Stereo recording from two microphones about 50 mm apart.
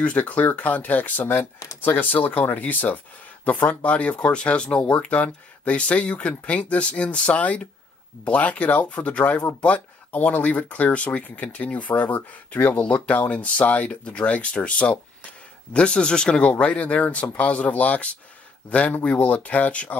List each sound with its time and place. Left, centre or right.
0.0 s speech: left